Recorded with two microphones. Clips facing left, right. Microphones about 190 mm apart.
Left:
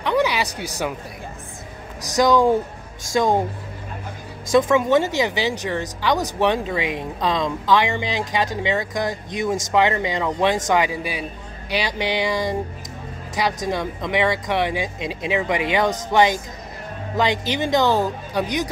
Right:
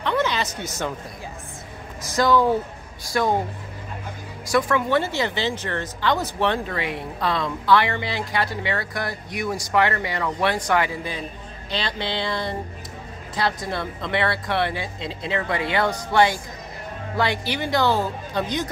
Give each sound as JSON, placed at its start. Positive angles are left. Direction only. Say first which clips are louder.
{"t": 0.0, "sound": "a sound", "louder": "left 3 dB", "side_deg": 10}
{"t": 2.1, "sound": "speech", "louder": "left 2 dB", "side_deg": 15}
{"t": 4.5, "sound": "speech", "louder": "left 5 dB", "side_deg": 20}